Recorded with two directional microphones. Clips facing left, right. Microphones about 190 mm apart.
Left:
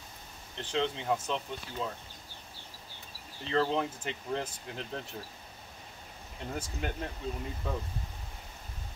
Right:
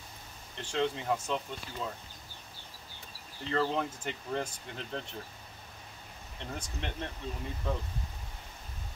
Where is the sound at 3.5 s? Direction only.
Centre (ahead or behind).